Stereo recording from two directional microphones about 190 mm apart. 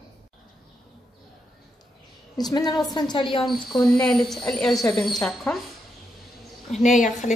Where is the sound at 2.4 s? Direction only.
20° left (ahead or behind).